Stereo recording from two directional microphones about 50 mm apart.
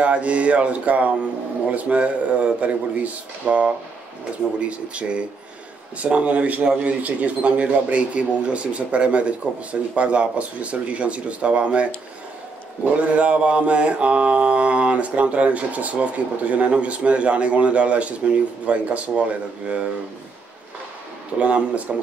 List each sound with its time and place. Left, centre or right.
0.0 s mantra: right
12.9 s mantra: right
21.4 s mantra: right